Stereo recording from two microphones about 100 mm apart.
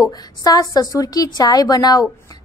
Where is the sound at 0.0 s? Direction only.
40° left (ahead or behind).